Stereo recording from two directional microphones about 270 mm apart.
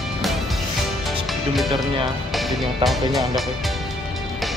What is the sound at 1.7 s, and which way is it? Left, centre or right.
Speech, centre.